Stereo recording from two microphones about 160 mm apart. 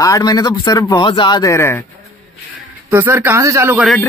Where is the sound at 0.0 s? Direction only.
25° left (ahead or behind).